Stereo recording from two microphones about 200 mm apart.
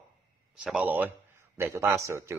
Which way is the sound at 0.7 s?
5° right (ahead or behind).